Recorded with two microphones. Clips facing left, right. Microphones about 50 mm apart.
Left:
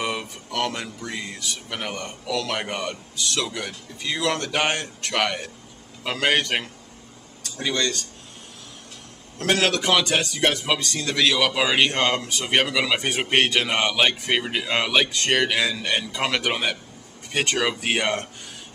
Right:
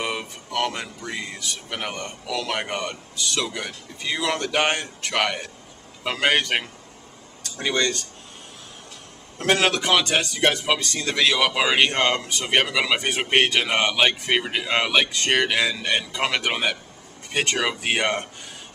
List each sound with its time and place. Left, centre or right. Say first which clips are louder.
0.0 s a man's voice: even; centre
7.5 s speech: right 2 dB; centre
9.4 s a man's voice: right 1 dB; centre